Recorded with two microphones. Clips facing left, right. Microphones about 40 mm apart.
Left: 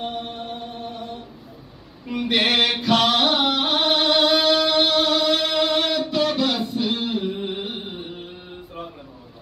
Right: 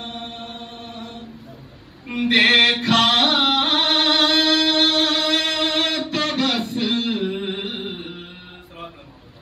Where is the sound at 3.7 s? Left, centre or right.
Right.